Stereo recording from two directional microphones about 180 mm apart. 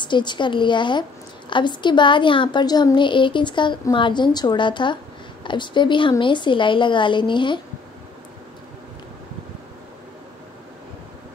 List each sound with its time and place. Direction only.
0.0 s a woman's voice: 25° left (ahead or behind)